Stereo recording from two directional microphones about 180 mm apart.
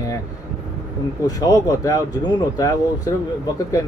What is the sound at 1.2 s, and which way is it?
A man's voice, 20° left (ahead or behind).